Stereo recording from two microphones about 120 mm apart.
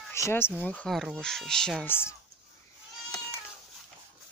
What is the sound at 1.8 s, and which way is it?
Speech, 20° left (ahead or behind).